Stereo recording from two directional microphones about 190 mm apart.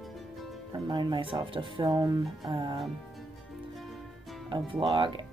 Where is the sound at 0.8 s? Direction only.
25° right (ahead or behind).